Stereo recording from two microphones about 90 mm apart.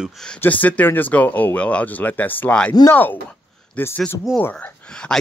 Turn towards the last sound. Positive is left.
turn(degrees=10)  # may be behind; listen again after turning